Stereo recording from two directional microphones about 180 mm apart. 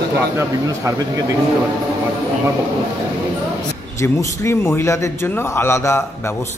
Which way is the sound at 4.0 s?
15° left (ahead or behind).